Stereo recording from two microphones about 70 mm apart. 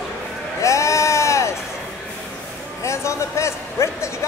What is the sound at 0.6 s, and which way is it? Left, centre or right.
Bleat, left.